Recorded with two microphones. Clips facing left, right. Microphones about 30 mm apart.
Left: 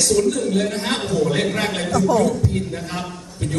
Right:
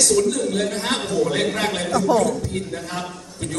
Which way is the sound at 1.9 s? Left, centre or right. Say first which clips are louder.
Left 1 dB; centre.